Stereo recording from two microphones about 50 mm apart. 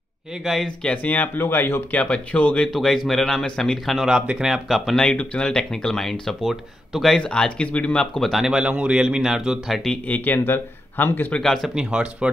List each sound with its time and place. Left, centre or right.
0.8 s speech: left
2.0 s speech: left
2.7 s speech: centre
3.7 s speech: centre
5.1 s speech: left; by 7.2 s centre
7.2 s speech: centre
8.3 s speech: centre
10.0 s speech: left
10.3 s speech: left
11.4 s speech: centre
11.7 s speech: centre